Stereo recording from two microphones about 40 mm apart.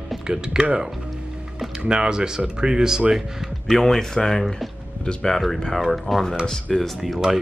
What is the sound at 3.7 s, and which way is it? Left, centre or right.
Speech, centre.